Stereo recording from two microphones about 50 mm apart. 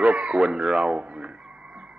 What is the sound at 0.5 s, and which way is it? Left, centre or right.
Speech, centre.